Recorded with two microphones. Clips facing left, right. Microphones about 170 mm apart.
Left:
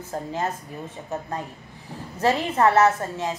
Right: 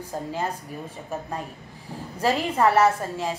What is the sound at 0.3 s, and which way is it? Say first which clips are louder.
A woman's voice: left 2 dB; 10° right (ahead or behind).